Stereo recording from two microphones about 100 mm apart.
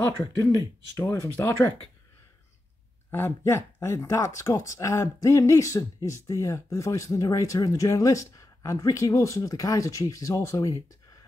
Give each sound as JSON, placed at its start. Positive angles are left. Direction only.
{"t": 0.2, "sound": "speech", "side_deg": 35}
{"t": 3.1, "sound": "speech", "side_deg": 25}